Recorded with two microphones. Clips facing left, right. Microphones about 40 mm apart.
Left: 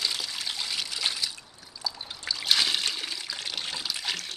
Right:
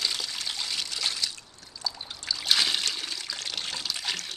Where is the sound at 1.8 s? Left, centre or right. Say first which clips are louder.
Left 1 dB; centre.